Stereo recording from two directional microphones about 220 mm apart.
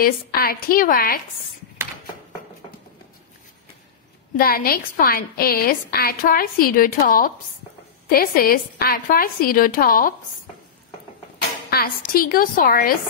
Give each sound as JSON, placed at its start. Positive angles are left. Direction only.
{"t": 0.0, "sound": "a woman's voice", "side_deg": 40}
{"t": 4.4, "sound": "a woman's voice", "side_deg": 40}
{"t": 11.7, "sound": "a woman's voice", "side_deg": 40}